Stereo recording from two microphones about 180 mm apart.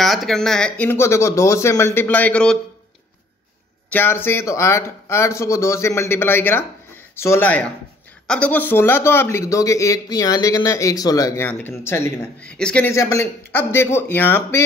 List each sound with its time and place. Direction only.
0.0 s a man's voice: centre (ahead or behind)
3.9 s a man's voice: 10° left (ahead or behind)